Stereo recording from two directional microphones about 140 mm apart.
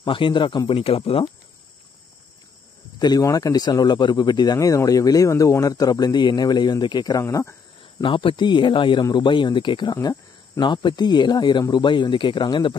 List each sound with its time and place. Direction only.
0.0 s speech: 35° left (ahead or behind)
3.0 s speech: 25° left (ahead or behind)
8.0 s speech: 35° left (ahead or behind)